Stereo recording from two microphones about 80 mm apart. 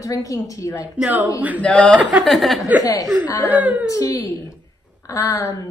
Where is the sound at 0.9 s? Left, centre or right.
Centre.